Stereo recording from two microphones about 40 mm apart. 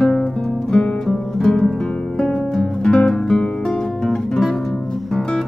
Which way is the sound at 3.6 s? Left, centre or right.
Centre.